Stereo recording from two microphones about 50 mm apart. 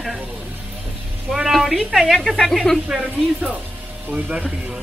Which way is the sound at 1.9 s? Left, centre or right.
Centre.